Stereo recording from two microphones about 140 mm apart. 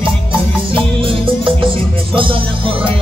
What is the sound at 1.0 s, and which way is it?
Music, 40° right (ahead or behind).